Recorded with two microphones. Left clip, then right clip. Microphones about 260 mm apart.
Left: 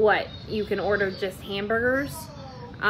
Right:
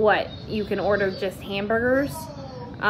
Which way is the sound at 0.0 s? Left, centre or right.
Centre.